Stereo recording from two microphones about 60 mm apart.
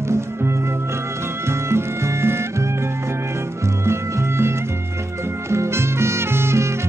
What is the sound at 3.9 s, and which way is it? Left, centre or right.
Music, right.